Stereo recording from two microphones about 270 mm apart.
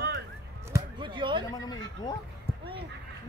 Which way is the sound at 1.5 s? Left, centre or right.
Centre.